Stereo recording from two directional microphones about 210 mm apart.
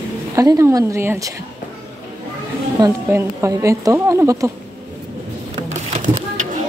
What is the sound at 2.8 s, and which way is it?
A woman's voice, 10° right (ahead or behind).